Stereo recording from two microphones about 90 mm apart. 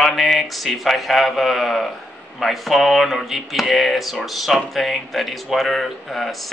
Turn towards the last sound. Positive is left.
turn(degrees=0)  # may be behind; listen again after turning